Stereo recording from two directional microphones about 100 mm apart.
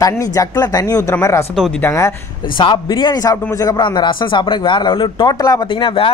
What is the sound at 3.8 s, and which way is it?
Speech, 50° left (ahead or behind).